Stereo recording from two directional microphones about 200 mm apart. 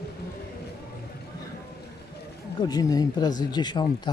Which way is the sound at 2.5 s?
20° left (ahead or behind).